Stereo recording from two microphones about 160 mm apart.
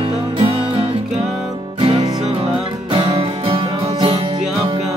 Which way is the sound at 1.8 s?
35° right (ahead or behind).